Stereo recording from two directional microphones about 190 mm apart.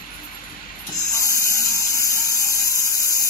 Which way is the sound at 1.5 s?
15° left (ahead or behind).